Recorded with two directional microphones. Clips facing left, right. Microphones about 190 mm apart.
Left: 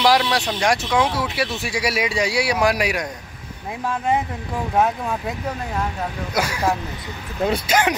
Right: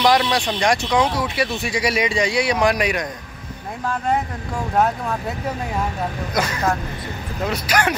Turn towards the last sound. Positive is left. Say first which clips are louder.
# left 2 dB
turn(degrees=30)  # may be behind; listen again after turning